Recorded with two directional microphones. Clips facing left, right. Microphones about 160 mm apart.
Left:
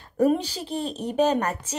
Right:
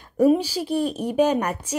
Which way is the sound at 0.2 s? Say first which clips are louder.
Right 4 dB; 10° right (ahead or behind).